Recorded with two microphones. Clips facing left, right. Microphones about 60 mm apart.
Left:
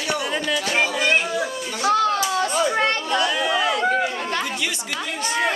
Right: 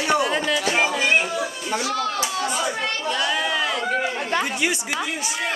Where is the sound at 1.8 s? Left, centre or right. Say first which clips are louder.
Left 9 dB; left.